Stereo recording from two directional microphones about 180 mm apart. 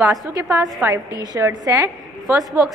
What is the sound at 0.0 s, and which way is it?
A woman's voice, 20° right (ahead or behind).